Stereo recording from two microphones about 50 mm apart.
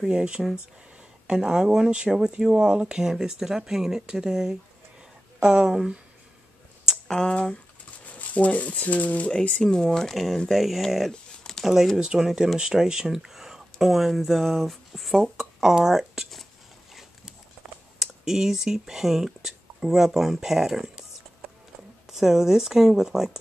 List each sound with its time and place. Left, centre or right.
0.0 s speech: centre
7.1 s speech: centre
8.0 s speech: left
9.3 s speech: centre
12.0 s speech: centre
18.0 s speech: centre
22.1 s speech: centre